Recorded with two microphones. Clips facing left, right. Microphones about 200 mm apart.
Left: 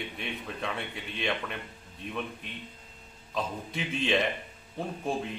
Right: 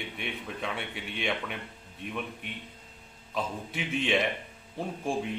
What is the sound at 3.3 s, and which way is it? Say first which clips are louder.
Speech: even; 5° right (ahead or behind).